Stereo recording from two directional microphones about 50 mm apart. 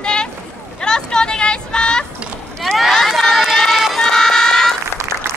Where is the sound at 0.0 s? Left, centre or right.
Centre.